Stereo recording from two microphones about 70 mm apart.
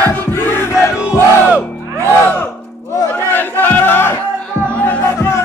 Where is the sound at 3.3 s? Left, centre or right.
Left.